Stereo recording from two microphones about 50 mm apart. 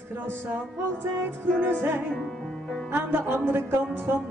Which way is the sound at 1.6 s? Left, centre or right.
Right.